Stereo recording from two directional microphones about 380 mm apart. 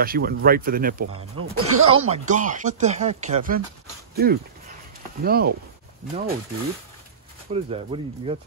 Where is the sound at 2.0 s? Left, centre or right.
Centre.